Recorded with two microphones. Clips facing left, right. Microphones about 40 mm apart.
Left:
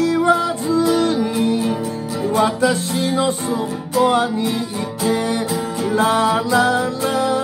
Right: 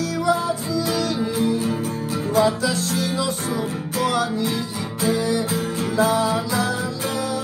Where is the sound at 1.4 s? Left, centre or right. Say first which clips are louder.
Left 3 dB; left.